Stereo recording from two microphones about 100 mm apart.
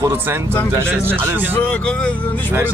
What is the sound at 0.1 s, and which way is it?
Speech, 25° right (ahead or behind).